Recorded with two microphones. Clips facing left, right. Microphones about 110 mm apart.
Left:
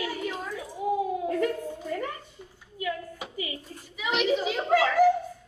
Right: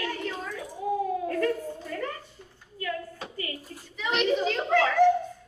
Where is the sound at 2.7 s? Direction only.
10° left (ahead or behind).